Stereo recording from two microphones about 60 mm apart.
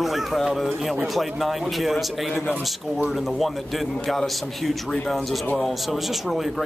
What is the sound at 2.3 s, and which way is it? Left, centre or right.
Speech, centre.